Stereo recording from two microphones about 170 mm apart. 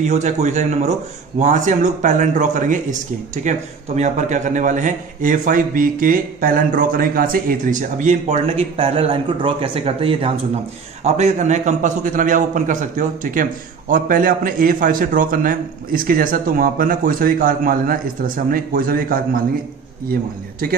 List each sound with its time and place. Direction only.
0.0 s a man's voice: 40° right (ahead or behind)